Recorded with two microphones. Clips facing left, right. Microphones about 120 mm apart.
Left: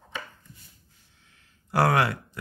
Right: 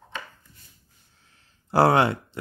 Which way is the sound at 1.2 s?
35° right (ahead or behind).